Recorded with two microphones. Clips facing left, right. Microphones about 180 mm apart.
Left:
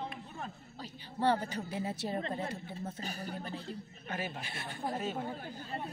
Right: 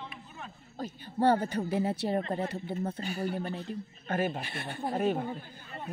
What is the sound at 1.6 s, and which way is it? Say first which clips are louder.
A man's voice: right 7 dB; 60° right (ahead or behind).